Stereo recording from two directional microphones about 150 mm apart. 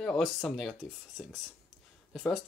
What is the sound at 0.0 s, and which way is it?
Speech, 5° left (ahead or behind).